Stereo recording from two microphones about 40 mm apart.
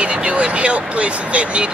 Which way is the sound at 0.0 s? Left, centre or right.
Right.